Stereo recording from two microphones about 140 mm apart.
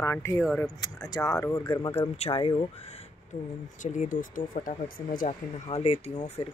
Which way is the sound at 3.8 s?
65° left (ahead or behind).